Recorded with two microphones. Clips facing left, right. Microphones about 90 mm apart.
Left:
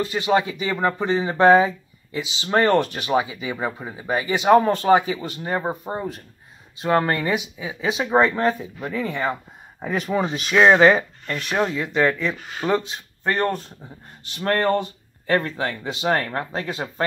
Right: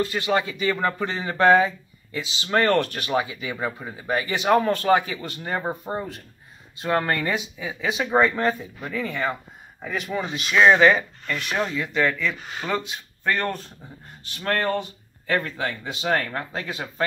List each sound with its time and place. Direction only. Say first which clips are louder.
0.0 s speech: left 3 dB; 20° left (ahead or behind)
11.5 s speech: left 4 dB; 20° left (ahead or behind)